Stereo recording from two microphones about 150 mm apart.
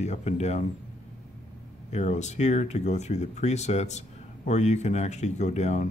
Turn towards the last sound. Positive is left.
turn(degrees=50)  # may be behind; listen again after turning